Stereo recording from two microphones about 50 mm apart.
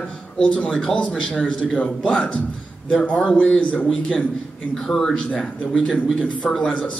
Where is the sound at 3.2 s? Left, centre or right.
Left.